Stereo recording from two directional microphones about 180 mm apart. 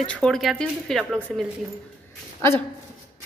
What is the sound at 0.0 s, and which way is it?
Speech, 5° left (ahead or behind).